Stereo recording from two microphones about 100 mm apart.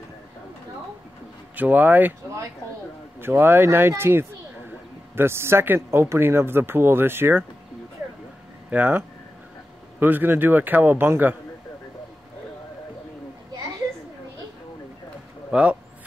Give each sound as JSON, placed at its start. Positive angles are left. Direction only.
{"t": 1.6, "sound": "speech", "side_deg": -15}
{"t": 3.2, "sound": "speech", "side_deg": -20}
{"t": 8.6, "sound": "speech", "side_deg": -15}
{"t": 15.5, "sound": "speech", "side_deg": -15}